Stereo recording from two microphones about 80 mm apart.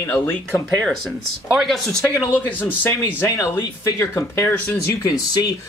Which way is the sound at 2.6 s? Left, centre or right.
Left.